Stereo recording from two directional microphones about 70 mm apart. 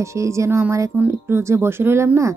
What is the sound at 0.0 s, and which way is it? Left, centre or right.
Speech, right.